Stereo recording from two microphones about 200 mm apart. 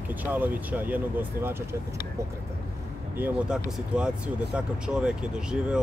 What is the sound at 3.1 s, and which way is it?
Speech, 5° right (ahead or behind).